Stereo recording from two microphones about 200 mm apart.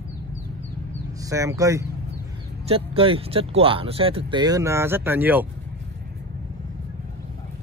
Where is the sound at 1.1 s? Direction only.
15° right (ahead or behind).